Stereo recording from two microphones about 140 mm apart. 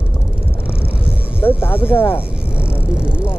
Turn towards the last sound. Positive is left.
turn(degrees=-10)  # may be behind; listen again after turning